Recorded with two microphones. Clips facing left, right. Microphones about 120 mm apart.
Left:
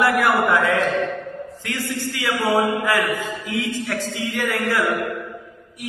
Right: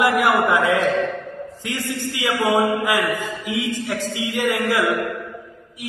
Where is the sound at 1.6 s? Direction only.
15° right (ahead or behind).